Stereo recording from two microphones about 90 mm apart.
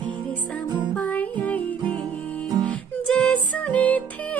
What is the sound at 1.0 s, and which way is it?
Music, 15° left (ahead or behind).